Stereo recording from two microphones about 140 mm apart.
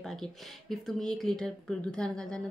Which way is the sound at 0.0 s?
Centre (ahead or behind).